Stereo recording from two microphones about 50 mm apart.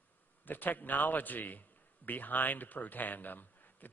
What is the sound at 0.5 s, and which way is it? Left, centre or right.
A man's voice, left.